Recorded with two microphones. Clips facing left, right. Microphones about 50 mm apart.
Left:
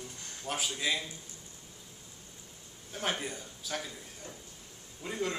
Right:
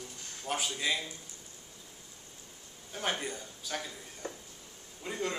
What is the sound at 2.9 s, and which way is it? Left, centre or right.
Speech, centre.